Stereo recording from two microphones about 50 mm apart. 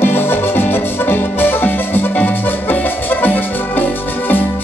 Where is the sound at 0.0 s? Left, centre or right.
Left.